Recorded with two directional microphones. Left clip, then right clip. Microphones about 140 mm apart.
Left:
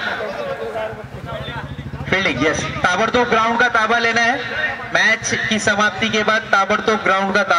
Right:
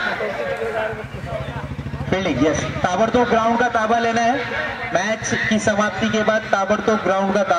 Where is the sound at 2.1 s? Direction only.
25° left (ahead or behind).